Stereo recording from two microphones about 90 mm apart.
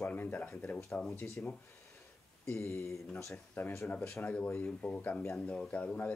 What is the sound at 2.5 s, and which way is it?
Speech, 25° left (ahead or behind).